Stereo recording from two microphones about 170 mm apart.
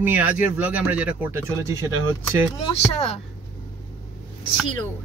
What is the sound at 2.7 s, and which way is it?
Speech, 40° left (ahead or behind).